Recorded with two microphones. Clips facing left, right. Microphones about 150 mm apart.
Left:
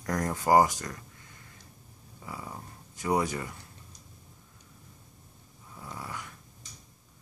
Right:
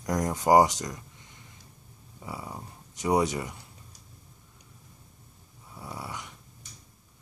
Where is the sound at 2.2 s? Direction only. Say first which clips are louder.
Right 2 dB; 20° right (ahead or behind).